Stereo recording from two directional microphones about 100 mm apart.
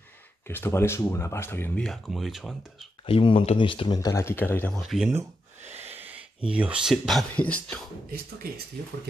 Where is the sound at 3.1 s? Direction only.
60° left (ahead or behind).